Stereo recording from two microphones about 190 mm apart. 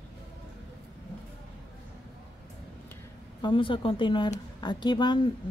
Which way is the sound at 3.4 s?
25° left (ahead or behind).